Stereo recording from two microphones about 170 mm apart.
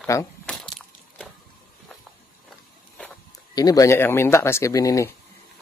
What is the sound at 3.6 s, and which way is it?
Speech, 20° left (ahead or behind).